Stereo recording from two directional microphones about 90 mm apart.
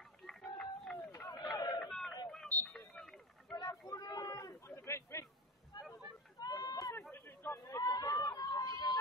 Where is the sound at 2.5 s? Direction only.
20° left (ahead or behind).